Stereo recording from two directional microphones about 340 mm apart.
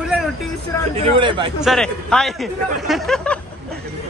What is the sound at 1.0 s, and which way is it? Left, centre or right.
Speech, centre.